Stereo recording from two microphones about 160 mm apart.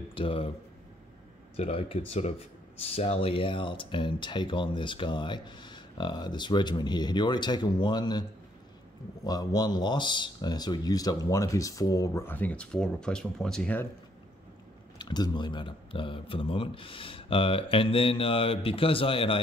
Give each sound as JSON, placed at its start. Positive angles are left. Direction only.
{"t": 0.1, "sound": "speech", "side_deg": 35}
{"t": 1.6, "sound": "speech", "side_deg": 35}
{"t": 15.0, "sound": "speech", "side_deg": 25}